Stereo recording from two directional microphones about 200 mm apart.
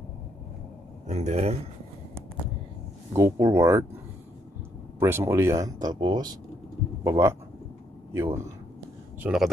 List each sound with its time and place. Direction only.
1.0 s speech: 35° right (ahead or behind)
3.1 s speech: 15° right (ahead or behind)
4.9 s speech: 10° right (ahead or behind)